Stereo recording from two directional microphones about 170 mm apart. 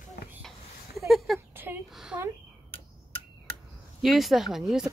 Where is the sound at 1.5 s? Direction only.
10° right (ahead or behind).